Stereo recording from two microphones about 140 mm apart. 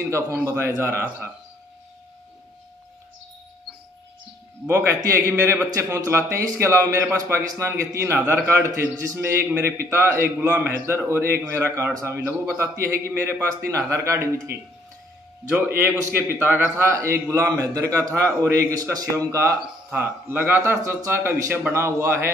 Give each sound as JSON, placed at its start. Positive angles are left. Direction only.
{"t": 0.6, "sound": "speech", "side_deg": -20}
{"t": 4.6, "sound": "a man's voice", "side_deg": -20}
{"t": 15.8, "sound": "a man's voice", "side_deg": -15}